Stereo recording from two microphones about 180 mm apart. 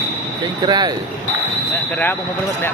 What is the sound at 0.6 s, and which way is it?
Speech, 20° right (ahead or behind).